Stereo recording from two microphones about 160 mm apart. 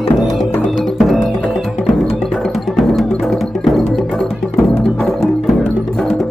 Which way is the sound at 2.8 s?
Centre (ahead or behind).